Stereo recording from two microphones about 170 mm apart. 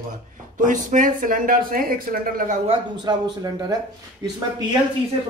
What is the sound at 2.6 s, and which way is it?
Speech, 25° right (ahead or behind).